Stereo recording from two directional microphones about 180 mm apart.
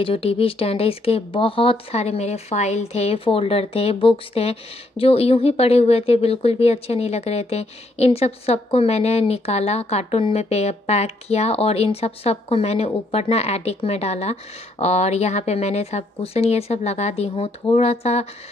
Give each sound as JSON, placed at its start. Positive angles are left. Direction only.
{"t": 0.0, "sound": "speech", "side_deg": 30}